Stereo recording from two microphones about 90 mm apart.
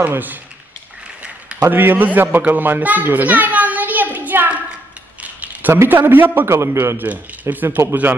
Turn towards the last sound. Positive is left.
turn(degrees=-25)  # may be behind; listen again after turning